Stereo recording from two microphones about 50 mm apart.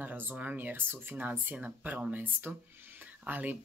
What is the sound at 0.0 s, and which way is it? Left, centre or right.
Speech, right.